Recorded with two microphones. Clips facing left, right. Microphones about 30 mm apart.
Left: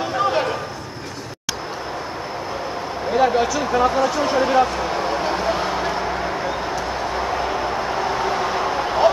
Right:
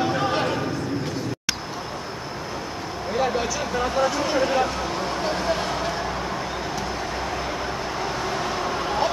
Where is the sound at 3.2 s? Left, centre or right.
Centre.